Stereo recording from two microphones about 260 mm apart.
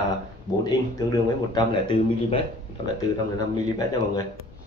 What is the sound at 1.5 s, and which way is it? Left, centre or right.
Speech, centre.